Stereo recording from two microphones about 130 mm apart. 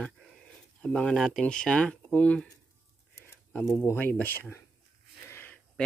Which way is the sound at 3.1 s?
20° left (ahead or behind).